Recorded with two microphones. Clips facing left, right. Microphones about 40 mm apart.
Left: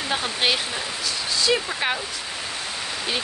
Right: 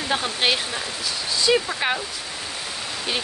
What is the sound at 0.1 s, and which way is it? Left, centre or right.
Speech, centre.